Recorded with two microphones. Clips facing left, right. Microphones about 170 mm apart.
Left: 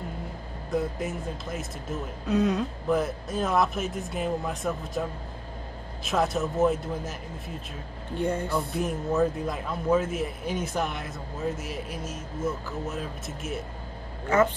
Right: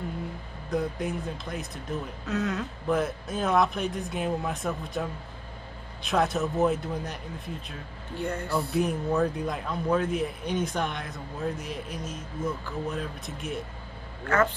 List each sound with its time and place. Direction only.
0.7 s speech: centre (ahead or behind)
2.2 s speech: 20° left (ahead or behind)
2.9 s speech: centre (ahead or behind)
6.0 s speech: centre (ahead or behind)
8.2 s speech: 20° left (ahead or behind)
8.5 s speech: centre (ahead or behind)